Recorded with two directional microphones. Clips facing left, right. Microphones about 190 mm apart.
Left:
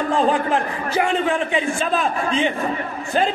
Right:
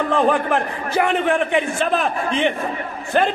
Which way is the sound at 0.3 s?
60° right (ahead or behind).